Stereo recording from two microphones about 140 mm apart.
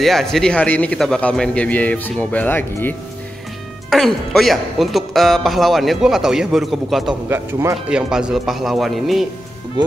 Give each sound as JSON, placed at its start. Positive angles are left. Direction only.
{"t": 0.0, "sound": "a man's voice", "side_deg": 0}
{"t": 3.9, "sound": "a man's voice", "side_deg": 0}
{"t": 7.2, "sound": "speech", "side_deg": -20}
{"t": 7.7, "sound": "a man's voice", "side_deg": -5}